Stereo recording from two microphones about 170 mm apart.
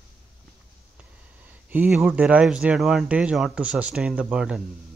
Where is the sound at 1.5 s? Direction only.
10° right (ahead or behind).